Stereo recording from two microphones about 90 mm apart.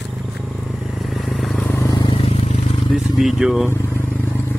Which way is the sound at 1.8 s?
50° left (ahead or behind).